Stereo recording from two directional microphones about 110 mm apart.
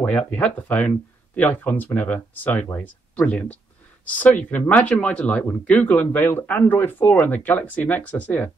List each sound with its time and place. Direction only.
0.3 s speech: 15° left (ahead or behind)